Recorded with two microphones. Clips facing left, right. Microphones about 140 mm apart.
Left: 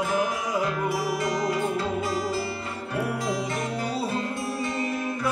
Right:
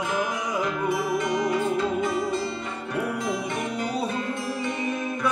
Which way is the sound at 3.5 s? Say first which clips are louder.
Right 1 dB; 20° right (ahead or behind).